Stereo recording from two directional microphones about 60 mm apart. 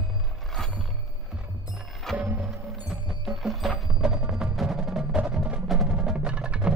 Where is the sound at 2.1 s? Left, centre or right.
Right.